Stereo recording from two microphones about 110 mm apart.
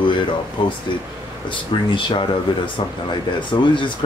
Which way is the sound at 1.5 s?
50° left (ahead or behind).